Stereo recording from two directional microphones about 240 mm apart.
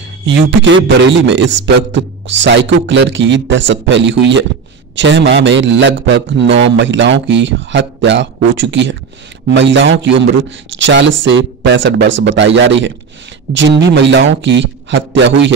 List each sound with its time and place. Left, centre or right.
0.2 s a man's voice: right